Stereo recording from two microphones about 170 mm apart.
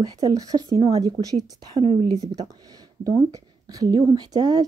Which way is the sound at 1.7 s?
35° right (ahead or behind).